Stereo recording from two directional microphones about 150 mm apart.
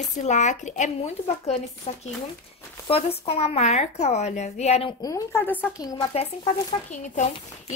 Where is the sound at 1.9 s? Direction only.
40° left (ahead or behind).